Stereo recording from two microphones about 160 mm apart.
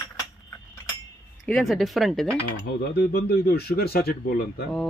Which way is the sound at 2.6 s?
85° left.